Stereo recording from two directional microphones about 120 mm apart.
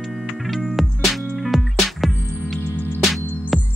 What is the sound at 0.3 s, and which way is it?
Music, centre (ahead or behind).